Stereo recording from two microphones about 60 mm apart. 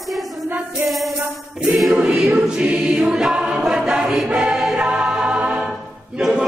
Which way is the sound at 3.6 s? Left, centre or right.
Centre.